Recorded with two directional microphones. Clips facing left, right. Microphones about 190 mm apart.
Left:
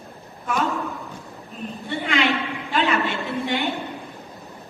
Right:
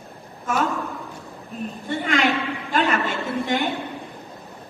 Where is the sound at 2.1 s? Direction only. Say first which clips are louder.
Right 1 dB; 45° right (ahead or behind).